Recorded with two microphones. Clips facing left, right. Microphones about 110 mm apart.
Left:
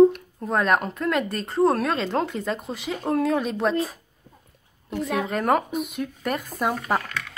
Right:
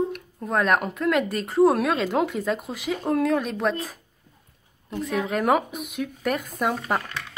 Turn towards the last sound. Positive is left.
turn(degrees=0)  # may be behind; listen again after turning